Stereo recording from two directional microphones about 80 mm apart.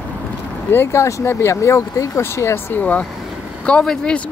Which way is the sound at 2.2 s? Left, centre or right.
Left.